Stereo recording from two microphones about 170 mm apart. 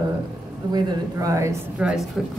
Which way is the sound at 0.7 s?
20° right (ahead or behind).